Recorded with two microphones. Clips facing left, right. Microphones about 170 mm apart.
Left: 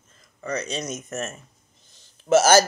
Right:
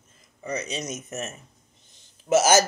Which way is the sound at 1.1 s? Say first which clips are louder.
Left 3 dB; 15° right (ahead or behind).